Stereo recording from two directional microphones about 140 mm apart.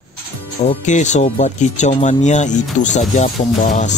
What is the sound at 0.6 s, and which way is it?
Speech, 55° left (ahead or behind).